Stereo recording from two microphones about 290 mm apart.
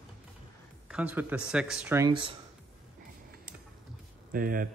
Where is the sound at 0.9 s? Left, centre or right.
Centre.